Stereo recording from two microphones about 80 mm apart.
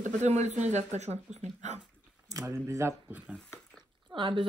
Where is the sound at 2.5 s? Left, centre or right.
Right.